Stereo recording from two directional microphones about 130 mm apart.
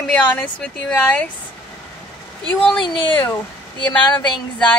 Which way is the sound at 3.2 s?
10° left (ahead or behind).